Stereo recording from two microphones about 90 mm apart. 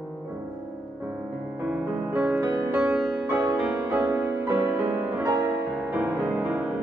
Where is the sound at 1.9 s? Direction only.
20° right (ahead or behind).